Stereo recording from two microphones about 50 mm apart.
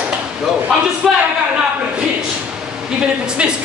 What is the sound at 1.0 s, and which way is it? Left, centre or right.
Speech, centre.